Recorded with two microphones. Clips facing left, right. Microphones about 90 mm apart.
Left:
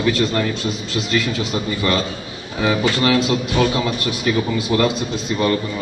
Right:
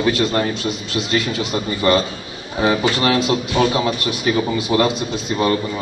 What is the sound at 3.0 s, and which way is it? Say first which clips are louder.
A man's voice: left 1 dB; 20° right (ahead or behind).